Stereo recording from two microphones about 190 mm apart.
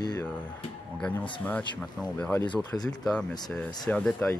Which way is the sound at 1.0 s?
5° left (ahead or behind).